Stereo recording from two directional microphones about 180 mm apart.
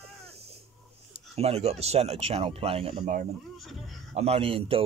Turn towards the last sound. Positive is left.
turn(degrees=-30)  # may be behind; listen again after turning